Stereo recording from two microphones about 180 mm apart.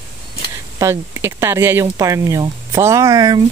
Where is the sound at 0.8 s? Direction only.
15° right (ahead or behind).